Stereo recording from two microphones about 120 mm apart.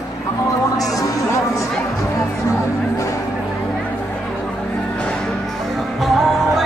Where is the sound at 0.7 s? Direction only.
30° left (ahead or behind).